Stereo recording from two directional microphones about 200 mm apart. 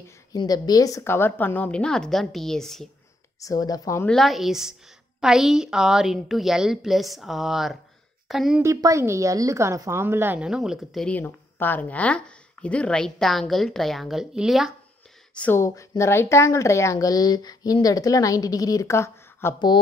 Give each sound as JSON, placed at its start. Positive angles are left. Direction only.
{"t": 0.3, "sound": "a woman's voice", "side_deg": 20}
{"t": 3.3, "sound": "a woman's voice", "side_deg": 15}
{"t": 4.1, "sound": "a woman's voice", "side_deg": 0}
{"t": 8.6, "sound": "a woman's voice", "side_deg": -15}
{"t": 15.3, "sound": "a woman's voice", "side_deg": 10}